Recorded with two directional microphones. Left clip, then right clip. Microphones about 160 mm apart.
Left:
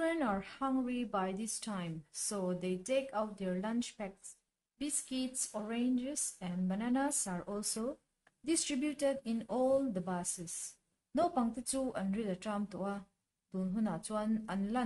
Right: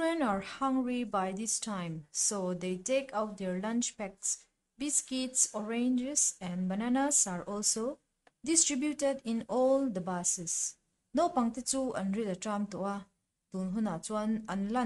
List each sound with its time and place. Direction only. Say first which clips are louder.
0.0 s a woman's voice: right 3 dB; 30° right (ahead or behind)